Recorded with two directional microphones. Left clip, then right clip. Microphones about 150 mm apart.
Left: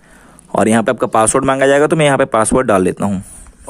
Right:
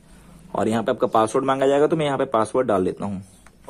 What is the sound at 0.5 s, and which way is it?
A man's voice, 35° left (ahead or behind).